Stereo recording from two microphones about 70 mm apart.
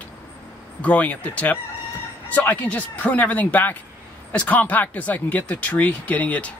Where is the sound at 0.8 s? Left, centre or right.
Left.